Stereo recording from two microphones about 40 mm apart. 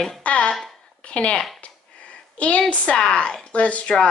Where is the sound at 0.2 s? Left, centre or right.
Left.